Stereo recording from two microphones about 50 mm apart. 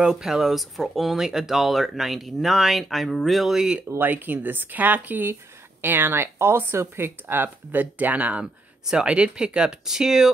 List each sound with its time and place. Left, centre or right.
0.0 s speech: centre
3.5 s speech: centre
4.0 s speech: right
8.8 s speech: centre